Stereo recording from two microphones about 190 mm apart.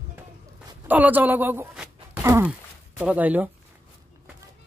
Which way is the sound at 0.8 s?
10° right (ahead or behind).